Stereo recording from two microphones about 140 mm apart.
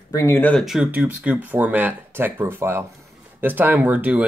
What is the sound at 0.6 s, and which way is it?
Speech, 5° right (ahead or behind).